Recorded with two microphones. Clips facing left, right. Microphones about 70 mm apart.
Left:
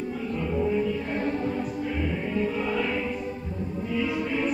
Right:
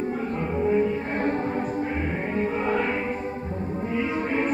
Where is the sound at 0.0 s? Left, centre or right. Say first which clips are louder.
Right 3 dB; right.